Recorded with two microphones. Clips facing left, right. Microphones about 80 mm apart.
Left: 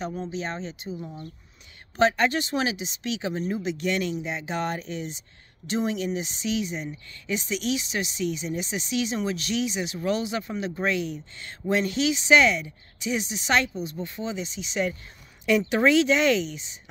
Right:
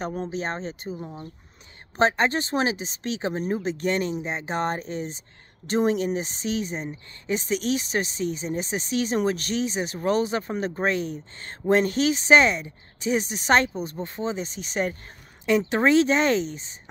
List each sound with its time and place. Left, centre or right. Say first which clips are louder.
0.0 s speech: right 2 dB; right
15.4 s speech: even; right